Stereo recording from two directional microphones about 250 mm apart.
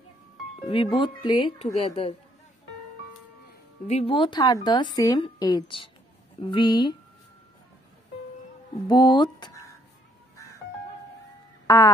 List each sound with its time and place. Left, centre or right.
0.7 s speech: left
3.8 s a woman's voice: left
8.8 s a woman's voice: centre
11.6 s music: centre